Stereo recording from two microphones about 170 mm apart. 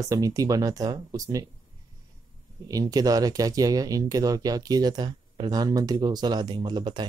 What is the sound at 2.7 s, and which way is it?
Speech, 20° right (ahead or behind).